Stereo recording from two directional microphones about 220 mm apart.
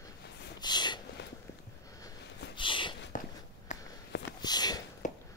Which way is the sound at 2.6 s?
20° left (ahead or behind).